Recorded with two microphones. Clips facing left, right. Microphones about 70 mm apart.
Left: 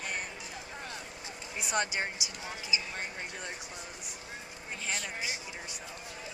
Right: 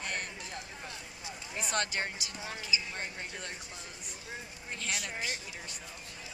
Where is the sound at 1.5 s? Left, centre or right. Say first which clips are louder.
Left 1 dB; centre.